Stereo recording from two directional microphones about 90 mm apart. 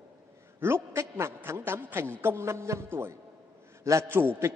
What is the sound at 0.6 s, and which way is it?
A man's voice, 30° right (ahead or behind).